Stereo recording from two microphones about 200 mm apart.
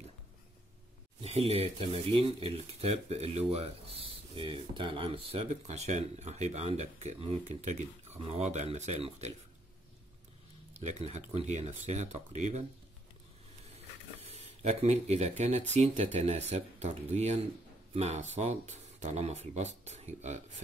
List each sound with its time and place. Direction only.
1.2 s speech: 30° right (ahead or behind)
10.7 s speech: 35° right (ahead or behind)
14.2 s speech: 30° right (ahead or behind)